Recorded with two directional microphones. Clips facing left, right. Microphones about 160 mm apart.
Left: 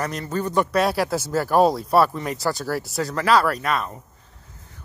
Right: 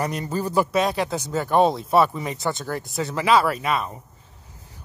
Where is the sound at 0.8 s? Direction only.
5° left (ahead or behind).